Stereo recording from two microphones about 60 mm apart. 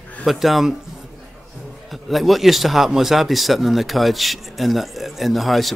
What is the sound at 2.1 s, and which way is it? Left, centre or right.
Speech, centre.